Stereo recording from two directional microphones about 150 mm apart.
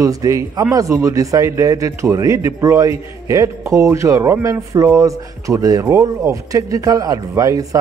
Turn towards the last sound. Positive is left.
turn(degrees=-20)  # may be behind; listen again after turning